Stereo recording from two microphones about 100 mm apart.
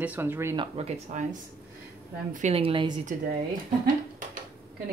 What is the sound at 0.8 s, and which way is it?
Speech, 90° right.